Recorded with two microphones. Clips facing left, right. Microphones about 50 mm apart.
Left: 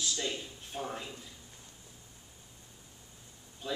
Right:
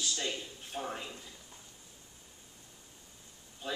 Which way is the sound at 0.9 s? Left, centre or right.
Centre.